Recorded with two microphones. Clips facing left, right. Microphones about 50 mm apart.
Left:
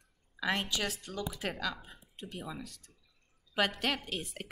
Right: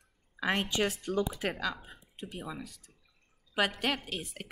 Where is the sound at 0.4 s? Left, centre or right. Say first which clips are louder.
Right 3 dB; right.